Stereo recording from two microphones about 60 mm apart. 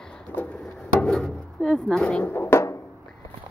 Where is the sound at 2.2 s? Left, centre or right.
Left.